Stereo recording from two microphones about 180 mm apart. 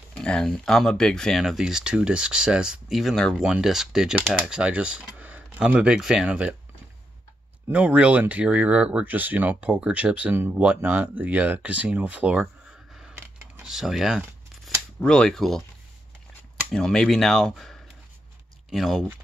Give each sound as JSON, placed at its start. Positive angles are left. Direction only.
{"t": 0.1, "sound": "speech", "side_deg": 5}
{"t": 7.7, "sound": "speech", "side_deg": -5}
{"t": 13.2, "sound": "scissors", "side_deg": -5}
{"t": 15.0, "sound": "speech", "side_deg": 5}
{"t": 16.7, "sound": "speech", "side_deg": 5}